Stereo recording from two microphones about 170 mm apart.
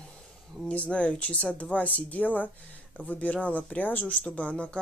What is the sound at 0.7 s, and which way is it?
Speech, 5° left (ahead or behind).